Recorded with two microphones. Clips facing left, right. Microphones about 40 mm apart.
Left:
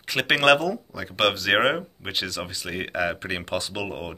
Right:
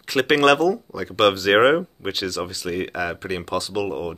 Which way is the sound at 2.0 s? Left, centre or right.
Centre.